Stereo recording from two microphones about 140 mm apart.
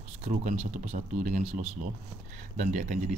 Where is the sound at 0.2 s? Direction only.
55° right (ahead or behind).